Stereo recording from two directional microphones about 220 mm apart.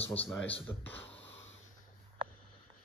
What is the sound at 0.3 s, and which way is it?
Speech, 5° left (ahead or behind).